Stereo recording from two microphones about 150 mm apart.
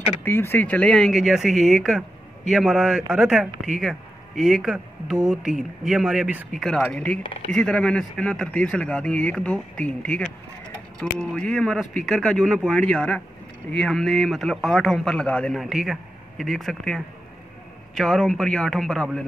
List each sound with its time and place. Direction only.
0.2 s speech: 15° left (ahead or behind); by 6.4 s 5° right (ahead or behind)
6.6 s speech: 5° left (ahead or behind)